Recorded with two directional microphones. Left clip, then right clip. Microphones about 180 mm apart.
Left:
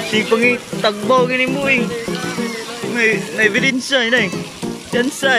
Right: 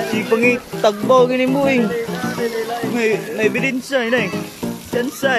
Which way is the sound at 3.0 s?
15° right (ahead or behind).